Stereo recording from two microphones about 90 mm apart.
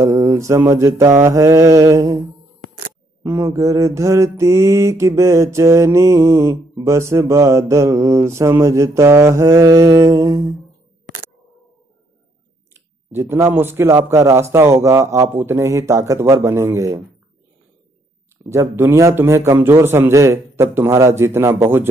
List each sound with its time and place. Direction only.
0.0 s mantra: 35° right (ahead or behind)
3.4 s mantra: 40° right (ahead or behind)
13.1 s a man's voice: 25° right (ahead or behind)
14.1 s mantra: 35° right (ahead or behind)
18.5 s a man's voice: 30° right (ahead or behind)